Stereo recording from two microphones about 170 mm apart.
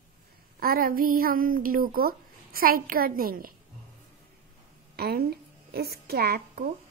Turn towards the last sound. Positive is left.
turn(degrees=-65)  # may be behind; listen again after turning